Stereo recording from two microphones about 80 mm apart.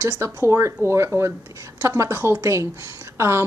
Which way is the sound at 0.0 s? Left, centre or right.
Right.